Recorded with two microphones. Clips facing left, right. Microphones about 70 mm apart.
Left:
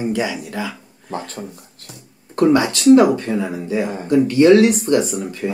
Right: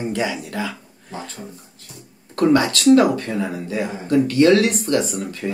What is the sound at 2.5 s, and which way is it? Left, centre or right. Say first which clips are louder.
Speech: left 2 dB; centre.